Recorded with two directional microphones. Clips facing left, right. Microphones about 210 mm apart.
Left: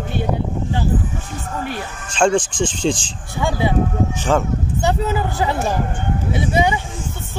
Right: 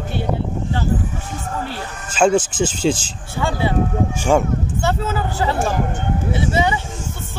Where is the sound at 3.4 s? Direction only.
15° left (ahead or behind).